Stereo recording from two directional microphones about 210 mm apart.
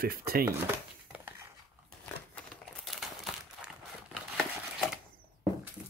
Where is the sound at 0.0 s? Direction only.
45° right (ahead or behind).